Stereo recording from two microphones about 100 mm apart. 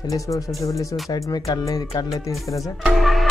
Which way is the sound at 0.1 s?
35° left (ahead or behind).